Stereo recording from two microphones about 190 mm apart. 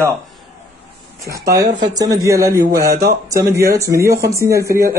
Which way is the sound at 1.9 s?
20° right (ahead or behind).